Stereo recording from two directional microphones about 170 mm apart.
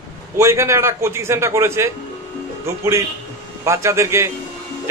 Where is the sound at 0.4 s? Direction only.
15° right (ahead or behind).